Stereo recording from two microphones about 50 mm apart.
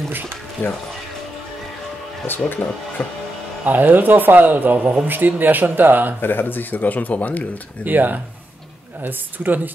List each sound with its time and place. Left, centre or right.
0.6 s speech: left
2.2 s speech: left
3.0 s music: left
3.6 s speech: right
6.2 s speech: left
7.8 s speech: right